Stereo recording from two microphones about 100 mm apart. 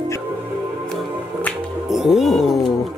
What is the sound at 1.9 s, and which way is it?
Speech, 5° right (ahead or behind).